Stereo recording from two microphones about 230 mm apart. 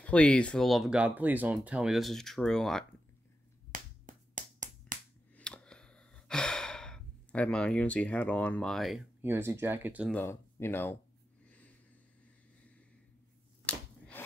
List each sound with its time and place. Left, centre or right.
0.0 s speech: centre
3.7 s finger snapping: right
5.3 s sigh: centre
10.1 s speech: centre
11.4 s wheeze: centre
13.7 s a sound: centre